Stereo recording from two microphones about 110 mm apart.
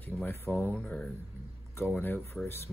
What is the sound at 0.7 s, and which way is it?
Speech, 10° left (ahead or behind).